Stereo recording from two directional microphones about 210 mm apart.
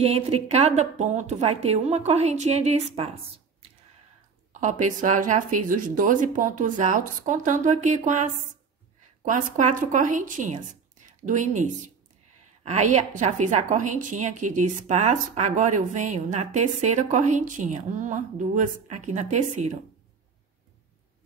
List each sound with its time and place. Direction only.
0.0 s a woman's voice: 30° right (ahead or behind)
4.5 s a woman's voice: 35° right (ahead or behind)